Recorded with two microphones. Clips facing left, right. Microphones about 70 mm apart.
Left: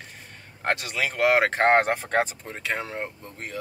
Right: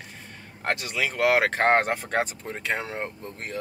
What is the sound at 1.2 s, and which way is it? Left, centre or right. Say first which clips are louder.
Speech: left 1 dB; centre.